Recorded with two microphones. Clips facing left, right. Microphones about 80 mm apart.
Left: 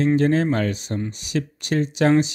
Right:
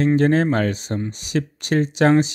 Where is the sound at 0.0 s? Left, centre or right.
Right.